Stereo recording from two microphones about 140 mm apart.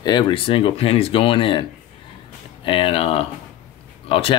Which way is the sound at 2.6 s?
40° left (ahead or behind).